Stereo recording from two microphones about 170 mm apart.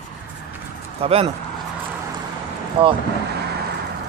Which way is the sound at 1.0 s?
35° right (ahead or behind).